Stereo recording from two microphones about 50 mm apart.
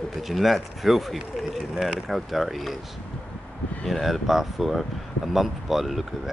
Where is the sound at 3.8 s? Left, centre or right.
Centre.